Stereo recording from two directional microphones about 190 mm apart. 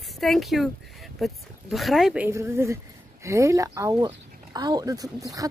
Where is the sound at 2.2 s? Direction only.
15° right (ahead or behind).